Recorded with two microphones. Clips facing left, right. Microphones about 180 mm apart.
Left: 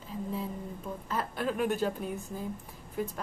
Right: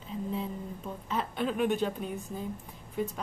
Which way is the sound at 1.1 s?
5° left (ahead or behind).